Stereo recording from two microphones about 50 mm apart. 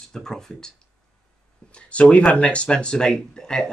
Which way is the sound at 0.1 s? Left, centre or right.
Centre.